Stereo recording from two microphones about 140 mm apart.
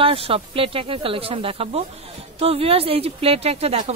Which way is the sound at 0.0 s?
40° right (ahead or behind).